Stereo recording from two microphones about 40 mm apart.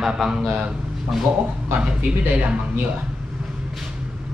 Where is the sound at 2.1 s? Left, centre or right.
Right.